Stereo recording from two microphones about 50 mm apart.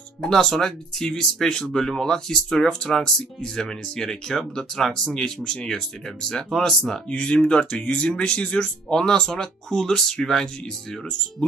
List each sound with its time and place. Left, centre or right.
0.2 s speech: centre
7.1 s speech: left